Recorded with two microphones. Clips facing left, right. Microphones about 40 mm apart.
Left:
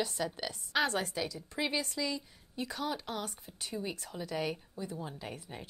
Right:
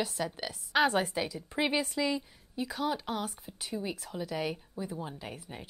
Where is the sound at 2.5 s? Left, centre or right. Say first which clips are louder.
Right 4 dB; centre.